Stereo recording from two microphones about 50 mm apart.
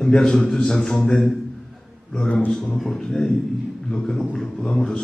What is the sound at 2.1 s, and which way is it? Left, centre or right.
Speech, left.